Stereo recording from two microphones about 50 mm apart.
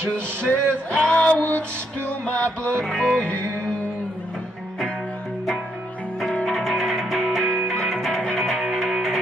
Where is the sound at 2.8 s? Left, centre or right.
Centre.